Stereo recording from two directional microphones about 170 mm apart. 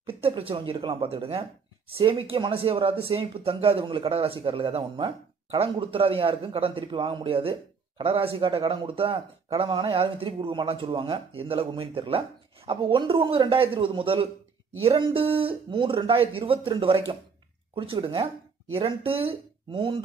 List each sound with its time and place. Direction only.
0.2 s speech: 30° right (ahead or behind)